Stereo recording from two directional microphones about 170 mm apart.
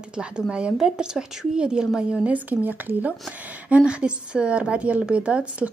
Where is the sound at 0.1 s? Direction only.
5° right (ahead or behind).